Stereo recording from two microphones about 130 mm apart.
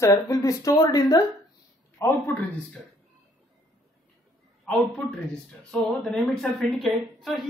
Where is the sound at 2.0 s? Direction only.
20° left (ahead or behind).